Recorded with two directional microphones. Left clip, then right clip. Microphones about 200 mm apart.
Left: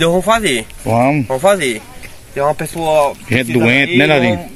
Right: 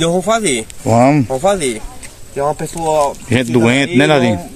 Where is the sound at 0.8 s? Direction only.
25° right (ahead or behind).